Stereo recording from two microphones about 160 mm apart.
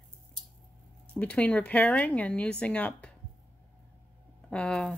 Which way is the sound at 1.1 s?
5° left (ahead or behind).